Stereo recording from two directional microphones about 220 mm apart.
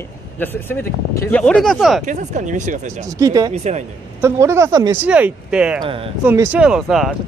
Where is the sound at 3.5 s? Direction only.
30° right (ahead or behind).